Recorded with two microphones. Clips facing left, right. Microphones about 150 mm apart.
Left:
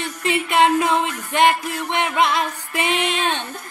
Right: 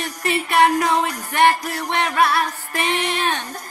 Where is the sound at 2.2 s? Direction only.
20° left (ahead or behind).